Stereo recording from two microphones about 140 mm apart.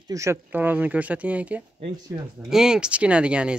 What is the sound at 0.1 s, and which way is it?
Speech, 20° right (ahead or behind).